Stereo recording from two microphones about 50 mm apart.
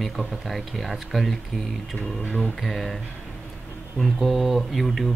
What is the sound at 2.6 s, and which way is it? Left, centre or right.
Speech, centre.